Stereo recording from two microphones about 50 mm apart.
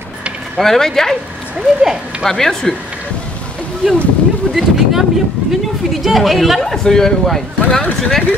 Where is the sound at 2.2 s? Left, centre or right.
Centre.